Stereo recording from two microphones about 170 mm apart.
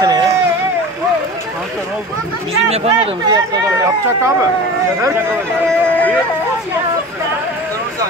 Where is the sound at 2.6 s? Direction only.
40° right (ahead or behind).